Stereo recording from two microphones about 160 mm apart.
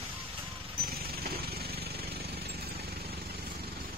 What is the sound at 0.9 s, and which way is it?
Jackhammer, 75° right (ahead or behind).